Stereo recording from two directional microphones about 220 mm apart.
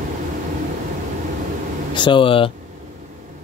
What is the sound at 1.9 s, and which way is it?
Speech, 20° left (ahead or behind).